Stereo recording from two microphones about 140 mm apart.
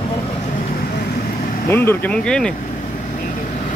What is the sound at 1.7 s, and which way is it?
Speech, 15° left (ahead or behind).